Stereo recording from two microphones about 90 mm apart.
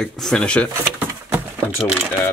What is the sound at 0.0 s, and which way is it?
Speech, 5° left (ahead or behind).